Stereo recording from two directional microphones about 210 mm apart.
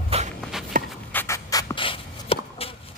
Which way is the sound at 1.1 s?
15° left (ahead or behind).